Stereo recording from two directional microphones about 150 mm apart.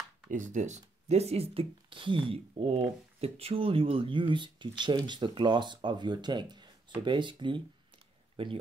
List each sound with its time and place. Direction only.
0.3 s speech: 55° right (ahead or behind); by 8.5 s 40° right (ahead or behind)